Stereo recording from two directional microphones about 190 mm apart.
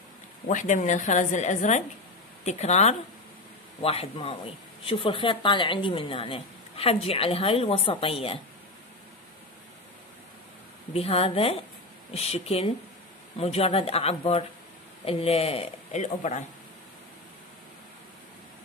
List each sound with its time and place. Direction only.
0.5 s a woman's voice: 40° left (ahead or behind)
10.9 s a woman's voice: 30° left (ahead or behind)